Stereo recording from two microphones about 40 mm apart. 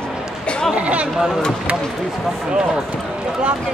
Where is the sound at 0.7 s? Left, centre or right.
Right.